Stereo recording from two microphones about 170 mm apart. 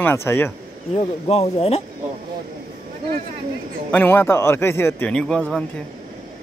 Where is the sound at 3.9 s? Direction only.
15° left (ahead or behind).